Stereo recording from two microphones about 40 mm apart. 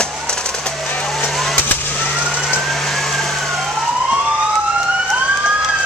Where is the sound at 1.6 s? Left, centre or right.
Left.